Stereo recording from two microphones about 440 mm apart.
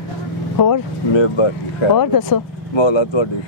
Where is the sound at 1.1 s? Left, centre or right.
Left.